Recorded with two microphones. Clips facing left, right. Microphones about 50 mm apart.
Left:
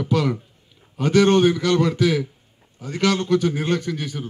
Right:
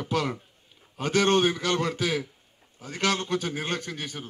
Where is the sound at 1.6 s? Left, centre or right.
Centre.